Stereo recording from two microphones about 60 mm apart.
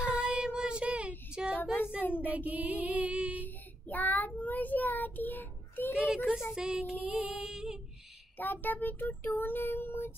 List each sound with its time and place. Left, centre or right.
0.0 s child singing: centre
2.0 s child singing: left
2.2 s music: right
3.4 s child singing: left
5.9 s a child's voice: centre
7.0 s music: right
7.4 s a child's voice: centre
8.4 s child singing: left